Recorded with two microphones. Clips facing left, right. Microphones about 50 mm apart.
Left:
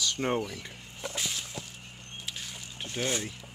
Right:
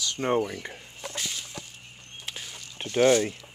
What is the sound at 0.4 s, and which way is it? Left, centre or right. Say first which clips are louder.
Speech: right 6 dB; right.